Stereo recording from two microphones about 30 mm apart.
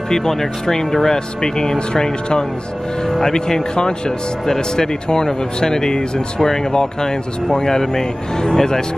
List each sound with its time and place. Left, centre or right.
0.1 s speech: centre